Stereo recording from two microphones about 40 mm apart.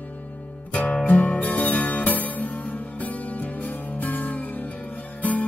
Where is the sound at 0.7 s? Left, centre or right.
Left.